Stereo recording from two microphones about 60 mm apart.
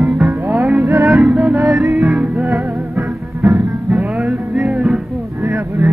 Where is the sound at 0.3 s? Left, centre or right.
Right.